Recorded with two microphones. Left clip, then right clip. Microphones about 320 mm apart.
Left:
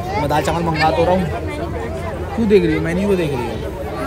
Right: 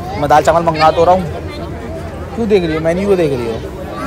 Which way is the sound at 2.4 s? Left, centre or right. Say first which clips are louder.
Right 2 dB; centre.